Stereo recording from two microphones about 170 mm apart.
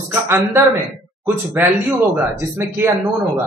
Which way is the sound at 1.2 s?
10° right (ahead or behind).